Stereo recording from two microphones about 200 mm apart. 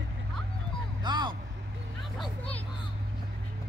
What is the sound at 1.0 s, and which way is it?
Speech, 20° right (ahead or behind).